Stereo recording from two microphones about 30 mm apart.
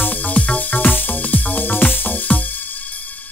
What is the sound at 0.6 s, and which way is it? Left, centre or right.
Music, left.